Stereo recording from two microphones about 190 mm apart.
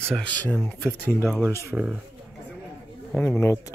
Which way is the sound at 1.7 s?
5° right (ahead or behind).